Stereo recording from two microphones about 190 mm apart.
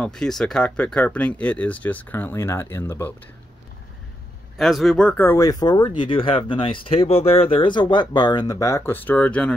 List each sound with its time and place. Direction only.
0.0 s speech: 5° left (ahead or behind)
4.6 s speech: centre (ahead or behind)